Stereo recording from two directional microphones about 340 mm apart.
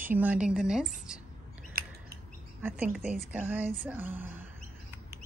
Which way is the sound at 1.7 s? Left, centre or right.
Right.